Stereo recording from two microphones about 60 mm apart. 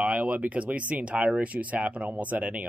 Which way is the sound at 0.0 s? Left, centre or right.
Right.